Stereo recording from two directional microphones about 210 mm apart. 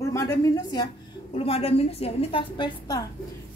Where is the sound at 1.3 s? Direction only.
30° left (ahead or behind).